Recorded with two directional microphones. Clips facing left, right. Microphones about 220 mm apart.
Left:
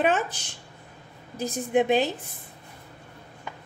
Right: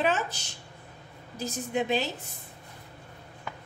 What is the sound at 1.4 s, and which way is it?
Speech, 55° left (ahead or behind).